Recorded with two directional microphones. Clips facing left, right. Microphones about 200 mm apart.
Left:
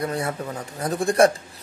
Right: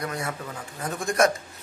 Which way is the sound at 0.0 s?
30° left (ahead or behind).